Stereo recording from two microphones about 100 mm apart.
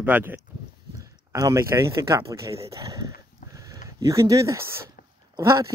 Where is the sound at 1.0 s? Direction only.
35° right (ahead or behind).